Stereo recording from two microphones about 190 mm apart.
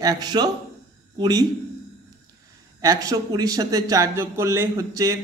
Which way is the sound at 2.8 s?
20° right (ahead or behind).